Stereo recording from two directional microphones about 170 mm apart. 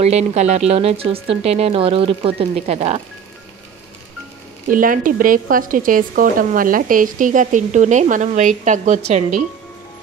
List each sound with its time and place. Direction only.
0.0 s speech: 40° right (ahead or behind)
4.6 s a woman's voice: 55° right (ahead or behind)